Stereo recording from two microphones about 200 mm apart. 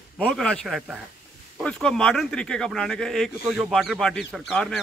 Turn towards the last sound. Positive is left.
turn(degrees=0)  # may be behind; listen again after turning